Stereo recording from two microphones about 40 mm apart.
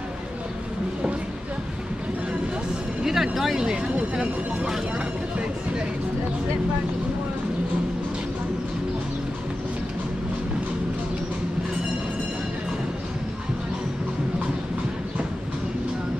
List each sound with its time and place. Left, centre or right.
3.0 s music: centre
3.5 s speech: centre